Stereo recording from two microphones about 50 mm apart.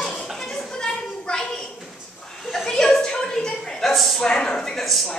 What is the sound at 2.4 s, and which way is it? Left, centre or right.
Chuckle, centre.